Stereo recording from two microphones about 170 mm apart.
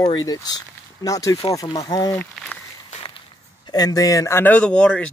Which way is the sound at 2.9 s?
30° left (ahead or behind).